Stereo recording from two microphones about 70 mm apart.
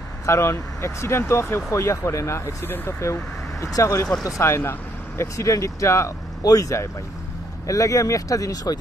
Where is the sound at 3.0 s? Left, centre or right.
Left.